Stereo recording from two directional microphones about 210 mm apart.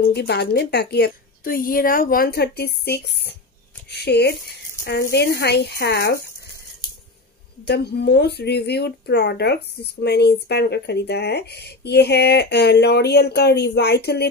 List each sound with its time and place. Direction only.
0.0 s speech: 50° left (ahead or behind)
7.6 s speech: 50° left (ahead or behind)